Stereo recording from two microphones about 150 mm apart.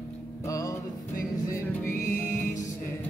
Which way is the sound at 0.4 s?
20° left (ahead or behind).